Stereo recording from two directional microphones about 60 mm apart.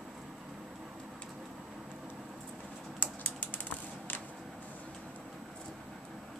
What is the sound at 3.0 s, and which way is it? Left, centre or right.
Typing, left.